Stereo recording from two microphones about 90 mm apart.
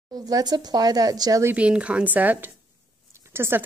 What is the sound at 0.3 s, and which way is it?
A woman's voice, 50° right (ahead or behind).